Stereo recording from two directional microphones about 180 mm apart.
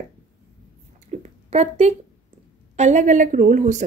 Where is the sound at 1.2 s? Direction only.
40° right (ahead or behind).